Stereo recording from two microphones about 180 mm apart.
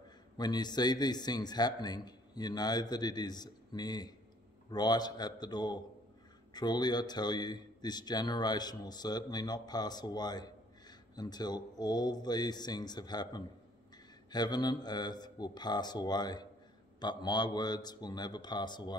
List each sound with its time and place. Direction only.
0.4 s speech: 25° left (ahead or behind)